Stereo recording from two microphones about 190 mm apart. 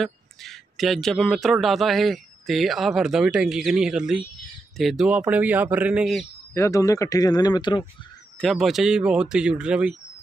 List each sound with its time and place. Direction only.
0.0 s a man's voice: centre (ahead or behind)
6.5 s speech: 15° left (ahead or behind)
8.4 s a man's voice: centre (ahead or behind)